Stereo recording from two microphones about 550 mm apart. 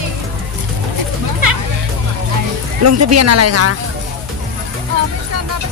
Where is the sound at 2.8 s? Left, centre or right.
Right.